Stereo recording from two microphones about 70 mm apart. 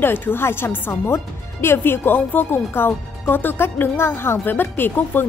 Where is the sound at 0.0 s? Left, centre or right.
Left.